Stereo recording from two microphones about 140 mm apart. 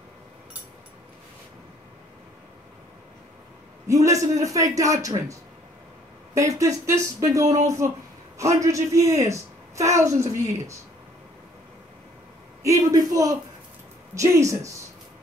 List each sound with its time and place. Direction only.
3.8 s speech: 20° right (ahead or behind)
6.3 s a woman's voice: 25° right (ahead or behind)
12.6 s speech: 25° right (ahead or behind)